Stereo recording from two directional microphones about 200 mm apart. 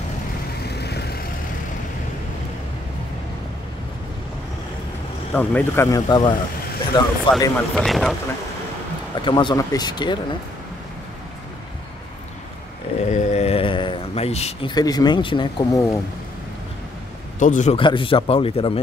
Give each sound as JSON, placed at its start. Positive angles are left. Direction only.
{"t": 0.7, "sound": "vehicle", "side_deg": 55}
{"t": 5.3, "sound": "speech", "side_deg": 10}
{"t": 7.7, "sound": "speech", "side_deg": 0}
{"t": 9.2, "sound": "speech", "side_deg": 25}
{"t": 13.1, "sound": "a sound", "side_deg": 35}
{"t": 14.7, "sound": "speech", "side_deg": 20}
{"t": 17.4, "sound": "speech", "side_deg": 40}